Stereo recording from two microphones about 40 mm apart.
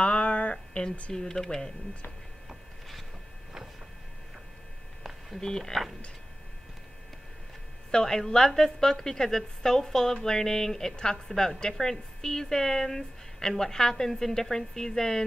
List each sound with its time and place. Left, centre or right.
0.0 s a sound: left
1.1 s a woman's voice: centre
5.6 s speech: centre
7.9 s a woman's voice: centre